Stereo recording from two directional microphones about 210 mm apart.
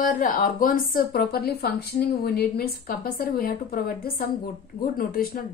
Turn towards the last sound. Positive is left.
turn(degrees=45)  # may be behind; listen again after turning